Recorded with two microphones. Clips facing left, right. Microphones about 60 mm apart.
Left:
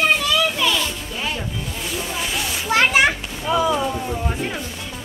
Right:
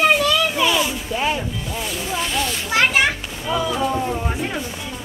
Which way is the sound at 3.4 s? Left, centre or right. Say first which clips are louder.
Left 2 dB; centre.